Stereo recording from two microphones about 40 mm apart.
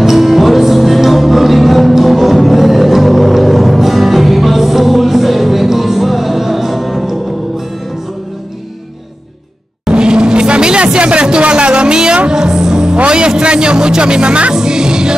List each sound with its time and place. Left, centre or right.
0.0 s music: centre
9.8 s music: right